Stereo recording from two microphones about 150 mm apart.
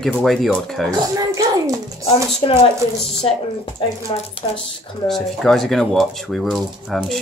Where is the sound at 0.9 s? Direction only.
25° right (ahead or behind).